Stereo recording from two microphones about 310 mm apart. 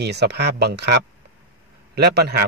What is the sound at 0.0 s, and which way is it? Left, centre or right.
Speech, right.